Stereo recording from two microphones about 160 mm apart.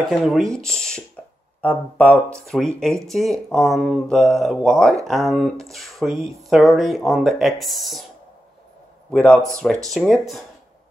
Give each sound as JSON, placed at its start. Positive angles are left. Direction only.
{"t": 0.1, "sound": "speech", "side_deg": 0}
{"t": 9.1, "sound": "speech", "side_deg": 5}